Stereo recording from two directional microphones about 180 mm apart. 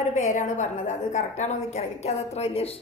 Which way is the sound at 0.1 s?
45° left (ahead or behind).